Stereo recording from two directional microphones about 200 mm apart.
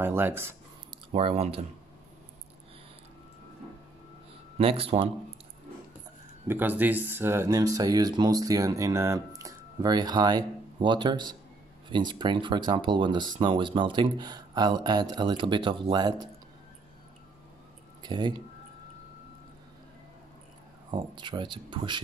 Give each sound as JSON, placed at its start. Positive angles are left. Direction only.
{"t": 0.0, "sound": "speech", "side_deg": -10}
{"t": 1.1, "sound": "speech", "side_deg": -30}
{"t": 4.6, "sound": "speech", "side_deg": -25}
{"t": 6.4, "sound": "speech", "side_deg": -10}
{"t": 18.0, "sound": "speech", "side_deg": -20}
{"t": 20.9, "sound": "speech", "side_deg": -20}